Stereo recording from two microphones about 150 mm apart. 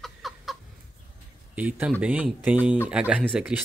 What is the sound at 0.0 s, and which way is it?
Chicken, centre (ahead or behind).